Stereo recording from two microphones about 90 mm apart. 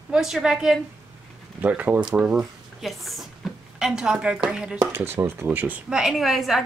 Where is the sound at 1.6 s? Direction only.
20° right (ahead or behind).